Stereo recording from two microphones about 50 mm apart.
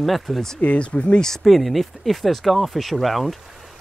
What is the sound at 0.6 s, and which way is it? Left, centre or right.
Speech, left.